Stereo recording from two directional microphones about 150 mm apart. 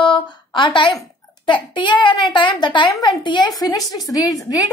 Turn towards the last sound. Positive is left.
turn(degrees=25)  # may be behind; listen again after turning